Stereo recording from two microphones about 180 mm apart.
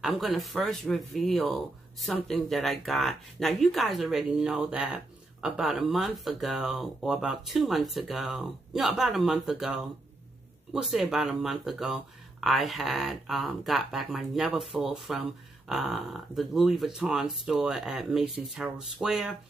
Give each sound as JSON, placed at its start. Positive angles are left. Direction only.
{"t": 0.0, "sound": "speech", "side_deg": 0}